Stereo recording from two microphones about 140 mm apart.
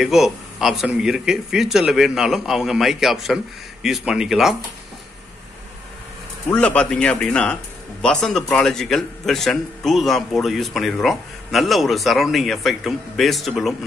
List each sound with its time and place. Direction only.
0.0 s a man's voice: centre (ahead or behind)
6.5 s a man's voice: 10° left (ahead or behind)